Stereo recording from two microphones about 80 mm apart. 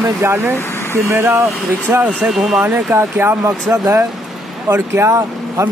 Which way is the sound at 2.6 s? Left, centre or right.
Right.